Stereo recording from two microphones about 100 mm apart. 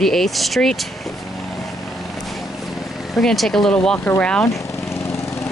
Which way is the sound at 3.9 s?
20° left (ahead or behind).